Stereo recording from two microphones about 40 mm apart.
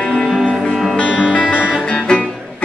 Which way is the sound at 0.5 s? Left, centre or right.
Left.